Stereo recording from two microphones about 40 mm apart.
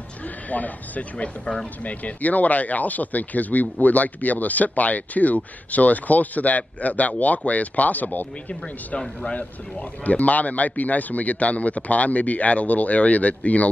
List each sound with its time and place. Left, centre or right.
0.5 s speech: left
1.1 s speech: left
1.9 s speech: left
9.3 s speech: left